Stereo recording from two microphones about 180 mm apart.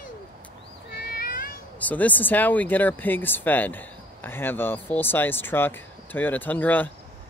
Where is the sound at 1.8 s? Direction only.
10° left (ahead or behind).